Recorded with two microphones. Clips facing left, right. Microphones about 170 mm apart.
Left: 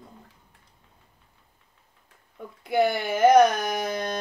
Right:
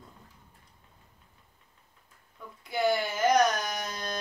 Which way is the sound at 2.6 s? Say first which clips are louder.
Left 4 dB; 55° left (ahead or behind).